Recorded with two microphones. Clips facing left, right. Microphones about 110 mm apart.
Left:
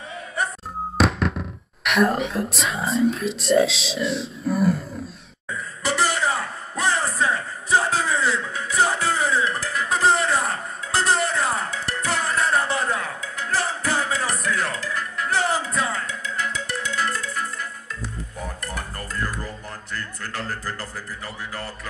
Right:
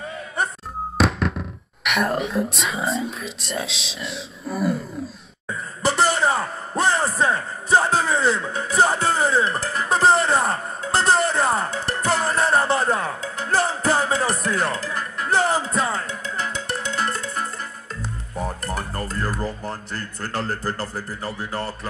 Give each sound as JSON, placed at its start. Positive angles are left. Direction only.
{"t": 0.9, "sound": "music", "side_deg": 0}
{"t": 1.9, "sound": "speech", "side_deg": 0}
{"t": 5.8, "sound": "a sound", "side_deg": -30}
{"t": 18.7, "sound": "music", "side_deg": -30}
{"t": 19.6, "sound": "speech", "side_deg": -30}